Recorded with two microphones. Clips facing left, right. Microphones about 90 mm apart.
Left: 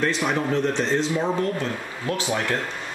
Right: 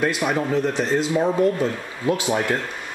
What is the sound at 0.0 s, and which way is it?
Speech, 5° right (ahead or behind).